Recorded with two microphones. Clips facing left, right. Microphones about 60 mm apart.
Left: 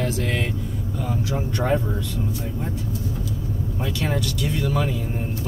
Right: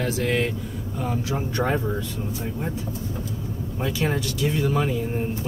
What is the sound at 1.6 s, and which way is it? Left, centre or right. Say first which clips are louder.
Speech: left 2 dB; centre.